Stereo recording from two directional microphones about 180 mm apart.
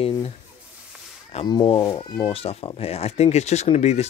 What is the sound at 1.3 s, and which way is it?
Speech, 30° left (ahead or behind).